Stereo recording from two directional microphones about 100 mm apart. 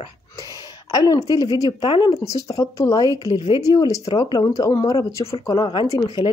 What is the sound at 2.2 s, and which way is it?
Speech, 35° left (ahead or behind).